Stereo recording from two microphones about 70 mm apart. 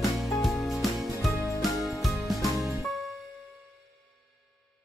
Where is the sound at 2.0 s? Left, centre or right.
Centre.